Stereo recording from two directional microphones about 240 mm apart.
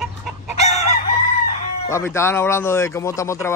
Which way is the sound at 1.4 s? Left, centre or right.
Centre.